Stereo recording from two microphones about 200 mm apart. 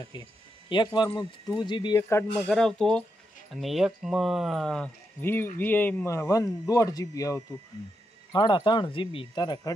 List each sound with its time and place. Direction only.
0.0 s speech: 20° left (ahead or behind)
2.3 s speech: centre (ahead or behind); by 9.8 s 20° left (ahead or behind)